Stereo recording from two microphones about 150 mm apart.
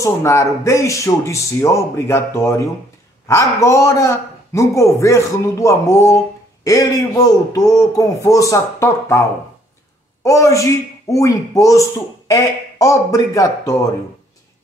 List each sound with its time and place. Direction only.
0.0 s a man's voice: 20° left (ahead or behind)
10.2 s a man's voice: 20° left (ahead or behind)